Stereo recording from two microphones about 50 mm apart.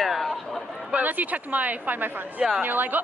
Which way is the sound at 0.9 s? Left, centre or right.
Right.